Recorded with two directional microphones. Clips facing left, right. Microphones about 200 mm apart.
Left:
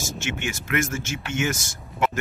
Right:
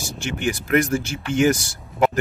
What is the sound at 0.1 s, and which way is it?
Speech, 35° right (ahead or behind).